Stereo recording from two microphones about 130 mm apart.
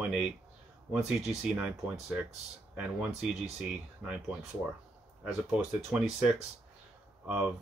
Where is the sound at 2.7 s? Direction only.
10° right (ahead or behind).